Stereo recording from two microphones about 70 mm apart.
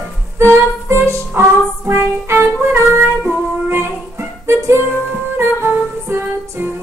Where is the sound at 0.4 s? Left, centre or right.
Right.